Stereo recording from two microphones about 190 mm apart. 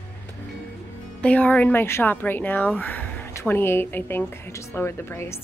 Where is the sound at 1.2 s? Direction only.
5° left (ahead or behind).